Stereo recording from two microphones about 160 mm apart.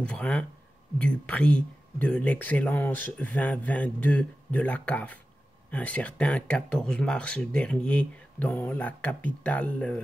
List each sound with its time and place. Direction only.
0.0 s speech: 5° left (ahead or behind)